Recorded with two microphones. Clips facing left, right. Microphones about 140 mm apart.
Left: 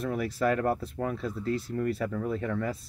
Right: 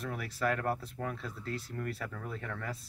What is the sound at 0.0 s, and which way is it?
Speech, 20° left (ahead or behind).